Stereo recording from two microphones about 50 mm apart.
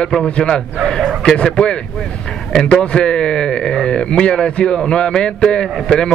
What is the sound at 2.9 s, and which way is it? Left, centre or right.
A man's voice, centre.